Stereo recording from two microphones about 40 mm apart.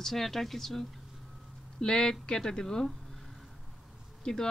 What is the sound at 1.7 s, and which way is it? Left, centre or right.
Speech, left.